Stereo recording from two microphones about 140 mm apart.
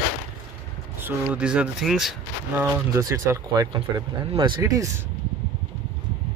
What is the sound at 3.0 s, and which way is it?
Speech, 25° right (ahead or behind).